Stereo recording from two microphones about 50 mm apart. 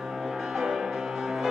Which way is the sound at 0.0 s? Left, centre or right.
Centre.